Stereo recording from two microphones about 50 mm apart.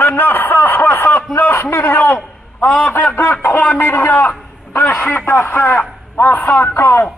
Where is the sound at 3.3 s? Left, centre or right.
Left.